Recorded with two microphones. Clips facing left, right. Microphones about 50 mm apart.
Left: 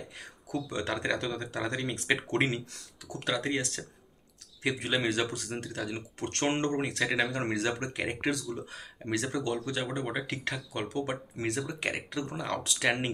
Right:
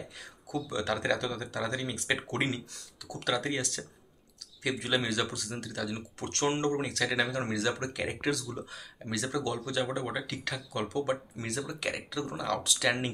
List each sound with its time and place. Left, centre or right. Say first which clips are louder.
0.5 s speech: right 1 dB; left
4.6 s speech: left 1 dB; left
7.8 s speech: even; centre
8.7 s speech: left 3 dB; left
9.4 s speech: even; centre
10.2 s speech: left 2 dB; left
10.5 s speech: right 4 dB; centre
11.3 s speech: left 3 dB; left